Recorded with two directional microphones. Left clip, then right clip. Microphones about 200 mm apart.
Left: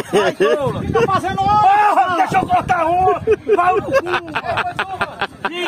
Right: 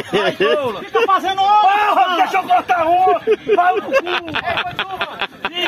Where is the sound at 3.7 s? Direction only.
5° left (ahead or behind).